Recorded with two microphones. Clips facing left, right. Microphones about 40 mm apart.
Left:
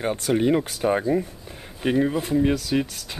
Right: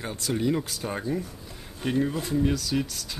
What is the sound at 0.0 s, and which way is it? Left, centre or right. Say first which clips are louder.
Speech: left 6 dB; left.